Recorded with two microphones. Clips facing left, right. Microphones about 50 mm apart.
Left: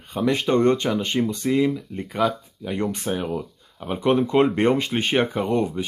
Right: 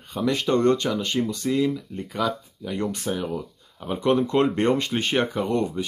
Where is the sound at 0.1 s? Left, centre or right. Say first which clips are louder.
Left 2 dB; left.